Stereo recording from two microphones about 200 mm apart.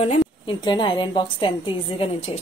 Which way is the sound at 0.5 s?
25° left (ahead or behind).